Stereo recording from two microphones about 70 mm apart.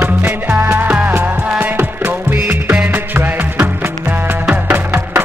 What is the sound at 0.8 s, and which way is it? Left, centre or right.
Music, centre.